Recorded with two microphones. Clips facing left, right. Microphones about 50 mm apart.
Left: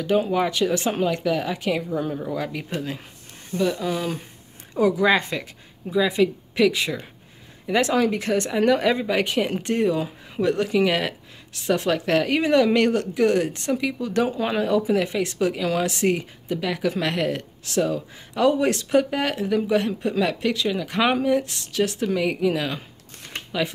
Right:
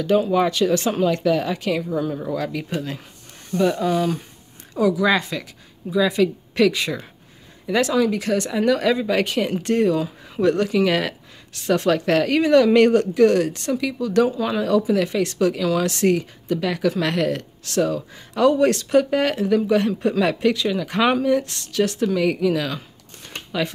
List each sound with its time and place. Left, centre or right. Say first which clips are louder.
0.3 s speech: right 3 dB; centre
4.7 s speech: even; left
5.9 s speech: right 1 dB; centre
7.6 s speech: right 1 dB; left
7.9 s speech: right 1 dB; left
9.0 s speech: right 2 dB; centre
12.3 s speech: right 4 dB; centre
12.7 s speech: right 5 dB; centre
13.1 s speech: right 4 dB; centre